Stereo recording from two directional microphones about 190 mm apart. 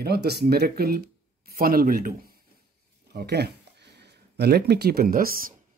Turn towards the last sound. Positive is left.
turn(degrees=-50)  # may be behind; listen again after turning